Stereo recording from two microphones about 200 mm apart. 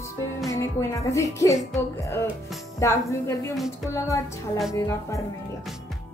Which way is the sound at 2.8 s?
15° left (ahead or behind).